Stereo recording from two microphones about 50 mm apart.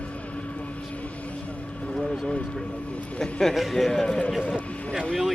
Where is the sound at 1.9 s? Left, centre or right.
Centre.